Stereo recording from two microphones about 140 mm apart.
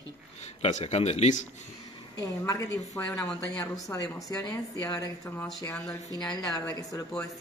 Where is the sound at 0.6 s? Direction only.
55° left (ahead or behind).